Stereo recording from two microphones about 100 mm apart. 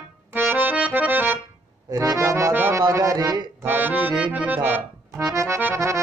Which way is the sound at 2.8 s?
30° right (ahead or behind).